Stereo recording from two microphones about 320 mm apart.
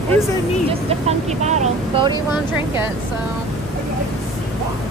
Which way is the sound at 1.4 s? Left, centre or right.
Right.